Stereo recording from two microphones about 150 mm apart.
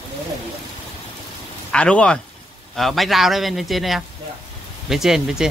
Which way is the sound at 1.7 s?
5° left (ahead or behind).